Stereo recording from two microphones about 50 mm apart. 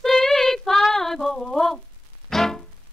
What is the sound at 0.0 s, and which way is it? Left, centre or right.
Female singing, centre.